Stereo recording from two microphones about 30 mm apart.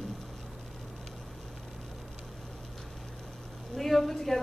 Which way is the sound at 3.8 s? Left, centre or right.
Centre.